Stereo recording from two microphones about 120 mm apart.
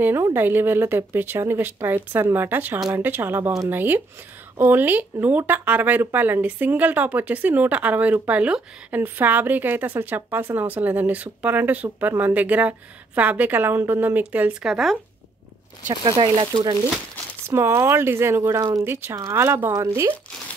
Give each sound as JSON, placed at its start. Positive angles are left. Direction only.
{"t": 0.0, "sound": "speech", "side_deg": -20}
{"t": 15.9, "sound": "speech", "side_deg": -30}
{"t": 16.2, "sound": "speech", "side_deg": -40}
{"t": 17.5, "sound": "speech", "side_deg": -20}